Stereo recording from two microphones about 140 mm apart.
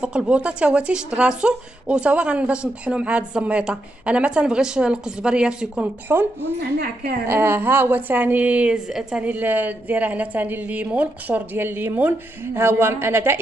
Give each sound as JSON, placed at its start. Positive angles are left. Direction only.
{"t": 0.0, "sound": "speech", "side_deg": -5}
{"t": 6.8, "sound": "a woman's voice", "side_deg": -90}
{"t": 7.2, "sound": "speech", "side_deg": -15}